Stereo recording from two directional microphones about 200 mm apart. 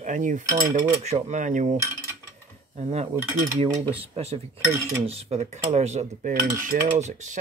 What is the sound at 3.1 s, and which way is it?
Mechanisms, 15° right (ahead or behind).